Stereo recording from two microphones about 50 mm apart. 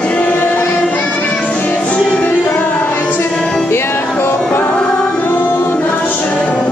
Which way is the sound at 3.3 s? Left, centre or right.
Centre.